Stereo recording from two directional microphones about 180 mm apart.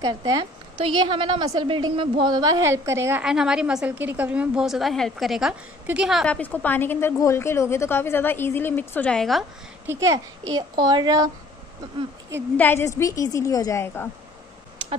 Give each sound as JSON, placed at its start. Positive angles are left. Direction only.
{"t": 0.0, "sound": "a woman's voice", "side_deg": -20}
{"t": 9.8, "sound": "a child's voice", "side_deg": -15}
{"t": 12.5, "sound": "a woman's voice", "side_deg": 15}